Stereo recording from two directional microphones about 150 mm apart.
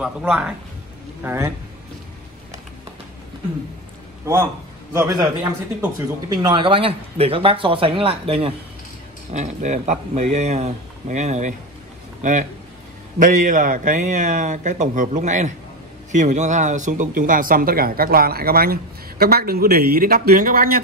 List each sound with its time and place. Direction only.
0.0 s a man's voice: 5° right (ahead or behind)
4.9 s a man's voice: 20° right (ahead or behind); by 8.5 s 40° right (ahead or behind)
9.3 s a man's voice: 50° right (ahead or behind); by 20.8 s 75° right (ahead or behind)